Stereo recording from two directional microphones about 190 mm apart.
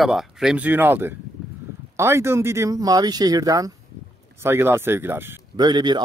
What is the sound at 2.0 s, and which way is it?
Speech, 15° right (ahead or behind).